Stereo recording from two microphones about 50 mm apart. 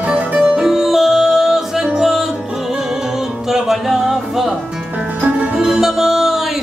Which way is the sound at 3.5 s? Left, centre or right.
Centre.